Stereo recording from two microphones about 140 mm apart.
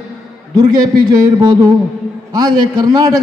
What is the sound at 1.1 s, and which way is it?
A man's voice, 30° right (ahead or behind).